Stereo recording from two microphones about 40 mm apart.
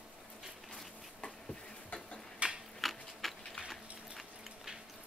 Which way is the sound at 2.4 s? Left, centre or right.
Right.